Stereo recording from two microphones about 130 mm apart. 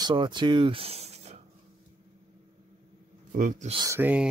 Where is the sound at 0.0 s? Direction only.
35° right (ahead or behind); by 1.4 s 55° right (ahead or behind).